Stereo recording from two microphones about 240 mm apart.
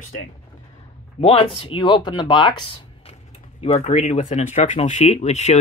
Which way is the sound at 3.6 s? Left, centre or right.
Left.